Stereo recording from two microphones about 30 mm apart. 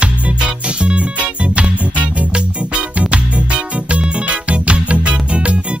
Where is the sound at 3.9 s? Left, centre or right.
Right.